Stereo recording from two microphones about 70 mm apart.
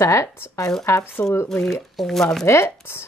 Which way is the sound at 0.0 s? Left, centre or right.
Left.